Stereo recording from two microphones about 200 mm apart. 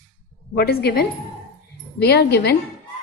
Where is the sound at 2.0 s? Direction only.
55° left (ahead or behind).